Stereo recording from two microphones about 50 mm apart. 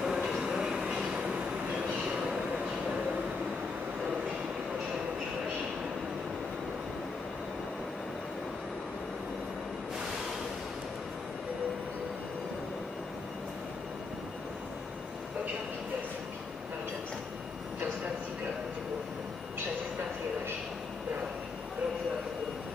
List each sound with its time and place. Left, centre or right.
0.0 s train: centre
1.7 s vehicle: centre